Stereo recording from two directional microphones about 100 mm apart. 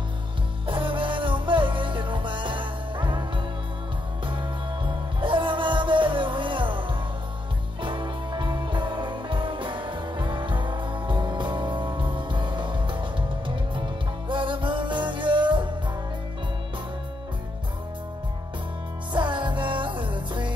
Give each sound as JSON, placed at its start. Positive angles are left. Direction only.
{"t": 0.7, "sound": "music", "side_deg": -55}
{"t": 14.3, "sound": "music", "side_deg": -55}
{"t": 19.1, "sound": "music", "side_deg": -50}